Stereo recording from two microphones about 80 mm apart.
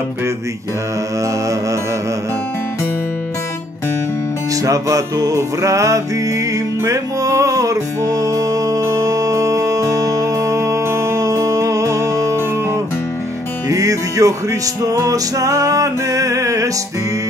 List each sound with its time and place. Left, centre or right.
4.6 s music: right
13.7 s music: right